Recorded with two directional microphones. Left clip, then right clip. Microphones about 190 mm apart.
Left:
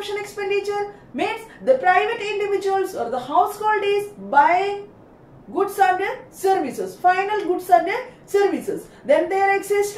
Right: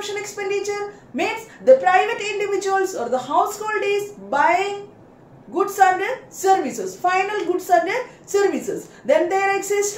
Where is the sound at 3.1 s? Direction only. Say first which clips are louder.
Even; 15° right (ahead or behind).